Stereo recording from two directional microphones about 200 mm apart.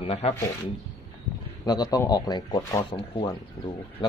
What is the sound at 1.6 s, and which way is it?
Speech, 20° left (ahead or behind).